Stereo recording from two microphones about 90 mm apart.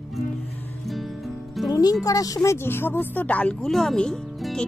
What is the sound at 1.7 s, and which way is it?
Speech, 45° left (ahead or behind).